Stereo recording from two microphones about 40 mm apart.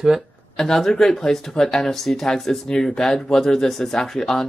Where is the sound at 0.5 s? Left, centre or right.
Centre.